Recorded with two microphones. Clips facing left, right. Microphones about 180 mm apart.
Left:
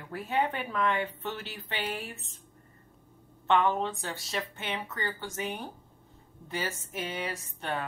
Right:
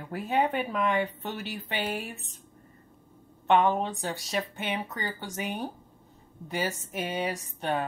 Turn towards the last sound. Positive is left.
turn(degrees=-15)  # may be behind; listen again after turning